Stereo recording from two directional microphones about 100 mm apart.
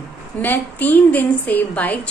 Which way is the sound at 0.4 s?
20° left (ahead or behind).